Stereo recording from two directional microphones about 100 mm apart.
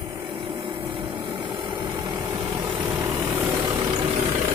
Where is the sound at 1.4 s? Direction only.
50° right (ahead or behind).